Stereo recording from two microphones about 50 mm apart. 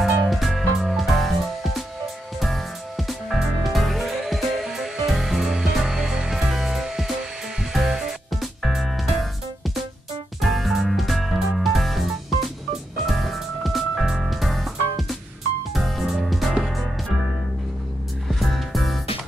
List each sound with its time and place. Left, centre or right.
0.0 s music: centre
10.4 s music: centre
18.3 s music: centre